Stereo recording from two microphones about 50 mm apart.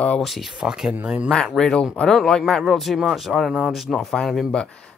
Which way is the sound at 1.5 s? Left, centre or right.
Centre.